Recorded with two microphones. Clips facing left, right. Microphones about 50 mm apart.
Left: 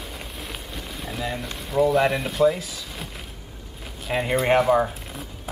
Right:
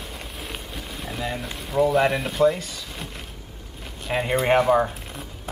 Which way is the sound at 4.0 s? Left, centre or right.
Centre.